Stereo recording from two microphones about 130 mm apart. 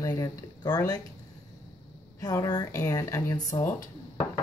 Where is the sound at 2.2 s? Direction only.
30° left (ahead or behind).